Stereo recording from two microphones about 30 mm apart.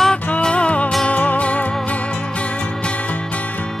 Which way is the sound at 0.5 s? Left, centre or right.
Left.